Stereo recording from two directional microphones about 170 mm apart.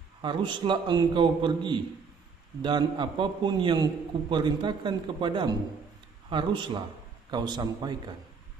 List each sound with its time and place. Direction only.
0.2 s a man's voice: 25° right (ahead or behind)